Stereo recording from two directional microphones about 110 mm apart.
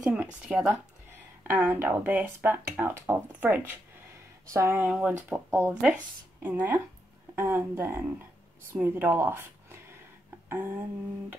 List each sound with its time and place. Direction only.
0.0 s speech: 10° right (ahead or behind)
4.5 s speech: 25° right (ahead or behind)